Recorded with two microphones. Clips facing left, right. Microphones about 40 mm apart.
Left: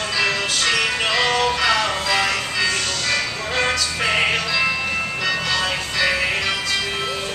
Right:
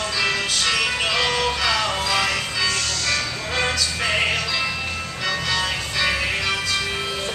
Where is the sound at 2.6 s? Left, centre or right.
Left.